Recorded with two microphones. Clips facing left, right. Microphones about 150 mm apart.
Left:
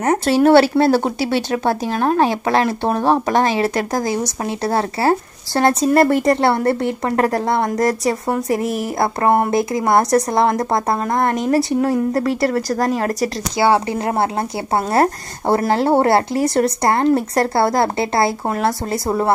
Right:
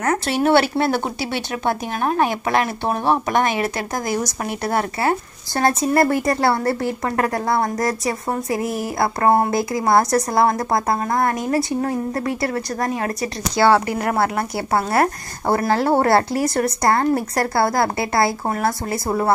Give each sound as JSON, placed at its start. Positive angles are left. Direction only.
{"t": 0.0, "sound": "speech", "side_deg": 35}
{"t": 13.6, "sound": "speech", "side_deg": 20}